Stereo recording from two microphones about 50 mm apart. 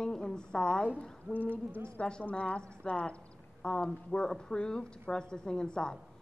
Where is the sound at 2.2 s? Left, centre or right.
Left.